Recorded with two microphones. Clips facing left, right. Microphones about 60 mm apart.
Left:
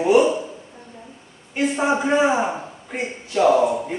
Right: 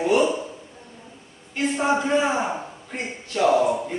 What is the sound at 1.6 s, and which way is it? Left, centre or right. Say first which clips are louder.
A man's voice: left 2 dB; centre.